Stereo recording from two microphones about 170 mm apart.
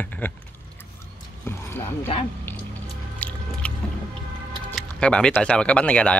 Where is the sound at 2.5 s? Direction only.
10° left (ahead or behind).